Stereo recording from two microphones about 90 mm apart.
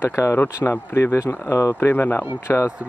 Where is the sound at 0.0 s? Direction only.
30° left (ahead or behind).